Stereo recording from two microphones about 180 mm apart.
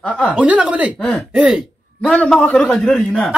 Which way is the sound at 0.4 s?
5° right (ahead or behind).